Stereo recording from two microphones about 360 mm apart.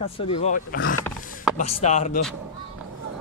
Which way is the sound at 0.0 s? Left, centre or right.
Centre.